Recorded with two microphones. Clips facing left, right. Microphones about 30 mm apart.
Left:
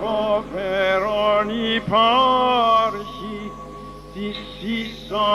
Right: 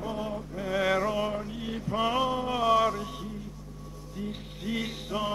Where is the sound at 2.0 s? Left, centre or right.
Left.